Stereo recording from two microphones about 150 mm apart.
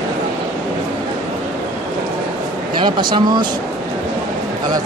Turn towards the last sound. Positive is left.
turn(degrees=-30)  # may be behind; listen again after turning